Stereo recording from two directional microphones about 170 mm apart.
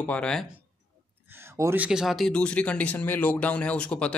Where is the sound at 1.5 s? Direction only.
20° right (ahead or behind).